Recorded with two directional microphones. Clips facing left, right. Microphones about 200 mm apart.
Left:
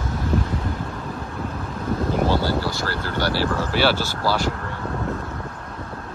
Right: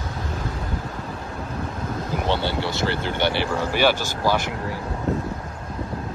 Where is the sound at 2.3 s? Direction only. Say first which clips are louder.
Left 2 dB; 25° right (ahead or behind).